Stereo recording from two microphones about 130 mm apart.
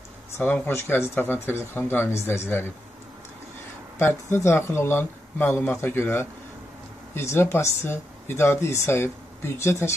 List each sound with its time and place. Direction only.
0.4 s speech: 15° left (ahead or behind)
4.0 s speech: 20° left (ahead or behind)